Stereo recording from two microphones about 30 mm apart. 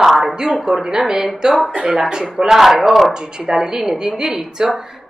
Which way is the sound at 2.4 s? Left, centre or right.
Centre.